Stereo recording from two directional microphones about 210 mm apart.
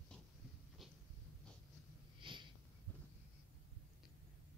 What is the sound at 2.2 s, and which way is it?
Snort, 25° right (ahead or behind).